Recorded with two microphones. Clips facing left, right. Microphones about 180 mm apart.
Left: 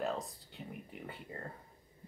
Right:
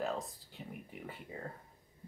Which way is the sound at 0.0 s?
Centre (ahead or behind).